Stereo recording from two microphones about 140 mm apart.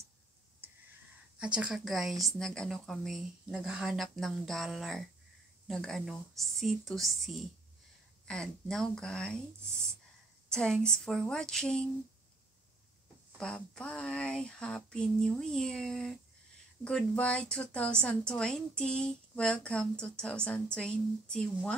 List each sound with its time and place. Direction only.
0.6 s a sound: 15° right (ahead or behind)
1.4 s a woman's voice: 5° right (ahead or behind)
13.4 s a woman's voice: 5° left (ahead or behind)